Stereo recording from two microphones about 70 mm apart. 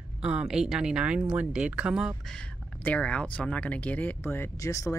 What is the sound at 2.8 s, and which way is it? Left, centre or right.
Speech, centre.